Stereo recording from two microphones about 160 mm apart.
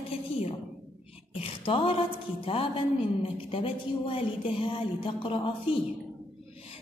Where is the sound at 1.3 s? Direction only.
35° left (ahead or behind).